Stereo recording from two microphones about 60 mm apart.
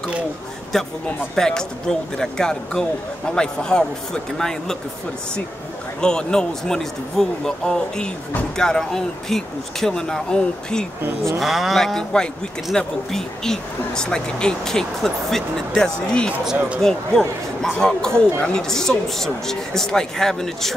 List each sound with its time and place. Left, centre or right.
1.3 s a man's voice: centre
5.9 s a man's voice: centre
11.3 s a man's voice: centre
16.5 s speech: right
16.8 s a man's voice: centre